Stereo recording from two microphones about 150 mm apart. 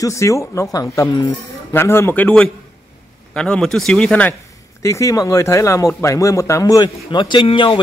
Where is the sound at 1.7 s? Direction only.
15° left (ahead or behind).